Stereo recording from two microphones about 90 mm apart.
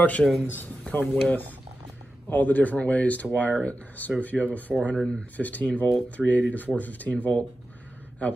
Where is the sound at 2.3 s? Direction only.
20° left (ahead or behind).